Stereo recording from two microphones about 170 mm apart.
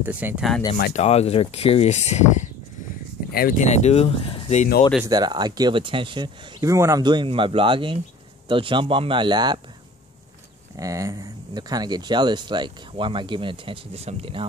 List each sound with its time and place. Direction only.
0.0 s speech: 10° right (ahead or behind)
0.9 s speech: 40° left (ahead or behind)
3.3 s speech: 60° left (ahead or behind)
3.6 s speech: 40° left (ahead or behind)
5.1 s speech: 25° right (ahead or behind)
10.8 s speech: 20° right (ahead or behind)